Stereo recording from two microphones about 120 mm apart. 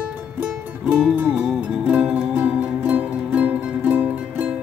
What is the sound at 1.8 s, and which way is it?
Music, 10° right (ahead or behind).